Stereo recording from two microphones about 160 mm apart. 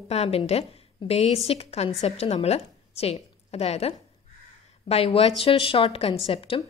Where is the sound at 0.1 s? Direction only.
40° left (ahead or behind).